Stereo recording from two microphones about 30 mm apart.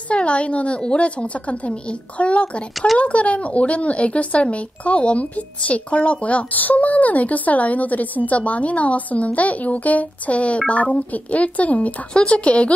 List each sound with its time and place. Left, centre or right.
0.1 s a woman's voice: left
6.5 s a woman's voice: left
8.3 s a woman's voice: left
12.1 s speech: left